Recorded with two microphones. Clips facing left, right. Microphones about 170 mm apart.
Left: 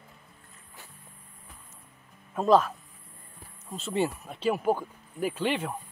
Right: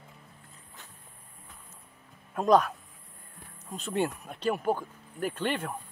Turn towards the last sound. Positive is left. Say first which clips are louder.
# left 2 dB
turn(degrees=10)  # may be behind; listen again after turning